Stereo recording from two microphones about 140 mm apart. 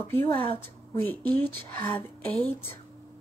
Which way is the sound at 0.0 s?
15° left (ahead or behind).